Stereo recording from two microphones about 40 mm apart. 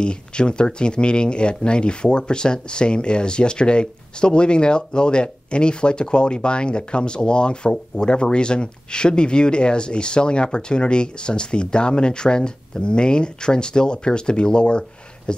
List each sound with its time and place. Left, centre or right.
0.0 s speech: left